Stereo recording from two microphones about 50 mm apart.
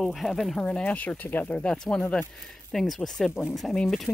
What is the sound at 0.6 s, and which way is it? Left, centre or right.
Speech, left.